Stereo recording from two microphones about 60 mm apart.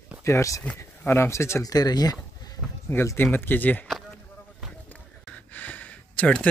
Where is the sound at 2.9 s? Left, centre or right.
Left.